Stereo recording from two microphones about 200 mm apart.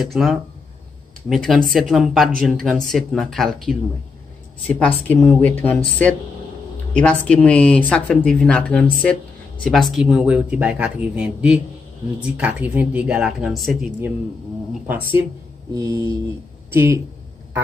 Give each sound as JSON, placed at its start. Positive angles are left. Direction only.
{"t": 0.0, "sound": "speech", "side_deg": 0}
{"t": 4.7, "sound": "speech", "side_deg": 10}
{"t": 6.9, "sound": "speech", "side_deg": 5}